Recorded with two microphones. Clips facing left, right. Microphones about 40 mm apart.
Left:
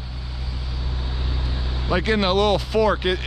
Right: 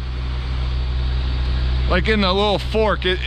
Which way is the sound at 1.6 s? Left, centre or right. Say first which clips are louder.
Right 3 dB; right.